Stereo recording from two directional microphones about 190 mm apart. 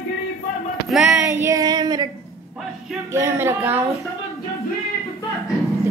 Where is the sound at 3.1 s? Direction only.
15° right (ahead or behind).